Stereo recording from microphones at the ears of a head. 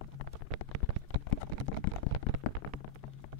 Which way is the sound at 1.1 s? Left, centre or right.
Left.